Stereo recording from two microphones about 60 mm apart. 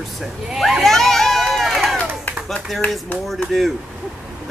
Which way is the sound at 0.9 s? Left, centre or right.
Centre.